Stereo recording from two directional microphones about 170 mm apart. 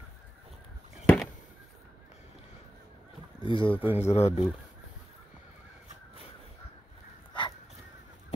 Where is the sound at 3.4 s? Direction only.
30° left (ahead or behind).